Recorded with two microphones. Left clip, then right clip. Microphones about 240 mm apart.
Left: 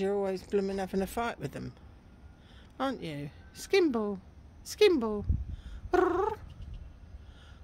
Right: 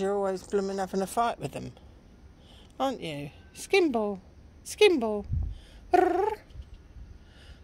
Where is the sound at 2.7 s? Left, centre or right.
Centre.